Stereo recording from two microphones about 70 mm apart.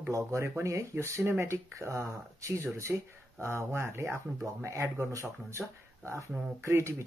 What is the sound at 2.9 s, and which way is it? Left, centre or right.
Speech, right.